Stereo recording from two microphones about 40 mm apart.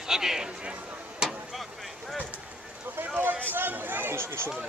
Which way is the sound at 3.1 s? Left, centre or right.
Right.